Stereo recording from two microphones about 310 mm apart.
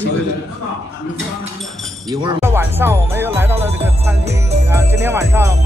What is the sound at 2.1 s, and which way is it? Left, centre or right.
Speech, centre.